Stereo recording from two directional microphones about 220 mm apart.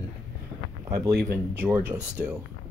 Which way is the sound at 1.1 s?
45° right (ahead or behind).